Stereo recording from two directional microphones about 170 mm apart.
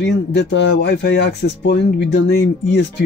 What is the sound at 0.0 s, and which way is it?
Speech, 90° left.